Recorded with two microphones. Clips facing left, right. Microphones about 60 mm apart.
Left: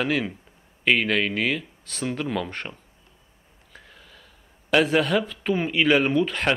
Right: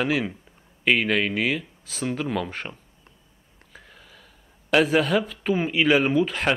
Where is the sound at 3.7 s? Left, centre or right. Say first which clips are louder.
Even; centre.